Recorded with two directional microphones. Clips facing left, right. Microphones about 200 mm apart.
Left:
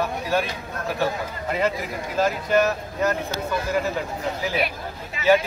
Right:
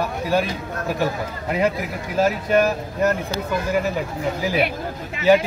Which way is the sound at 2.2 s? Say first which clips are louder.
Right 2 dB; 10° right (ahead or behind).